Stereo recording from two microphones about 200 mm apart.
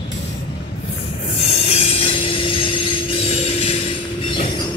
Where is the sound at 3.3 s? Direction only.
30° left (ahead or behind).